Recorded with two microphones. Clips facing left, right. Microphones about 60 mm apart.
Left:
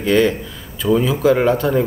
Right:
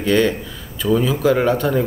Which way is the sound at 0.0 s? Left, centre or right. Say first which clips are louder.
Left 1 dB; centre.